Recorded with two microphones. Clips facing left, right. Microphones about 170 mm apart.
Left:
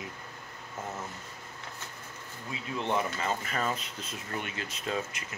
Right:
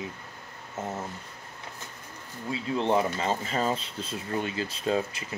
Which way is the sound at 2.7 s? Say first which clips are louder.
Right 5 dB; 30° right (ahead or behind).